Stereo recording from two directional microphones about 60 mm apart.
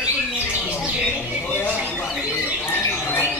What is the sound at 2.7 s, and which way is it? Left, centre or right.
Squawk, left.